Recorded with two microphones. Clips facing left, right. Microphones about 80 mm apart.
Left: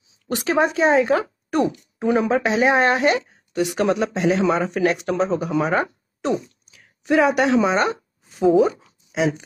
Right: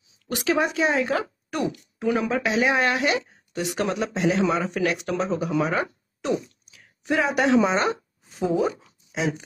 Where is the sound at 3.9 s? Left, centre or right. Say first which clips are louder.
Left 4 dB; left.